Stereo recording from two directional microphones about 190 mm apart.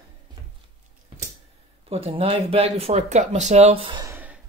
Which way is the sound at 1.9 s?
35° right (ahead or behind).